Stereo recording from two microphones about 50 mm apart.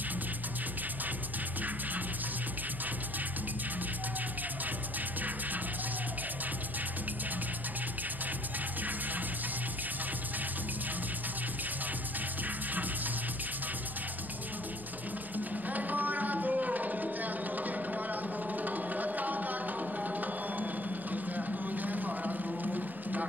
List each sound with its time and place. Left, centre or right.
15.3 s tabla: right